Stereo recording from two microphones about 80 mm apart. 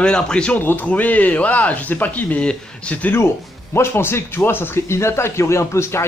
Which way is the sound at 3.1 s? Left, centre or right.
Left.